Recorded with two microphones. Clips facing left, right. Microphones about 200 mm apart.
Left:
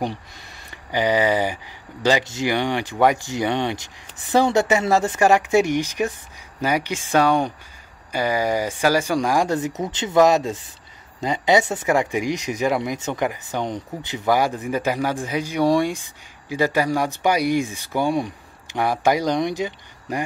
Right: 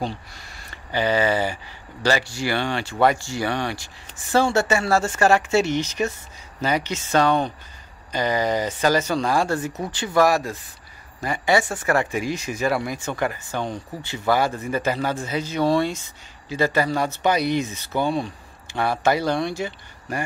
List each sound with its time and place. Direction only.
0.0 s speech: 15° left (ahead or behind)